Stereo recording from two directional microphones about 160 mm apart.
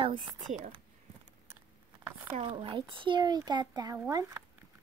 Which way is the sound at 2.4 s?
30° right (ahead or behind).